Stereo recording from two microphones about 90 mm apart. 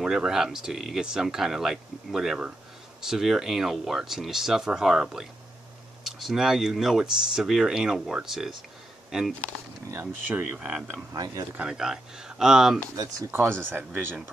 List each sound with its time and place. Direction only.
0.0 s speech: 5° right (ahead or behind)
10.2 s speech: 20° right (ahead or behind)
12.9 s speech: 40° right (ahead or behind)
13.3 s speech: 25° right (ahead or behind)